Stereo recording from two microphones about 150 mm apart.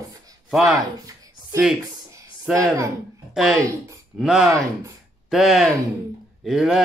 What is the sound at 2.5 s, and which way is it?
Speech, 20° right (ahead or behind).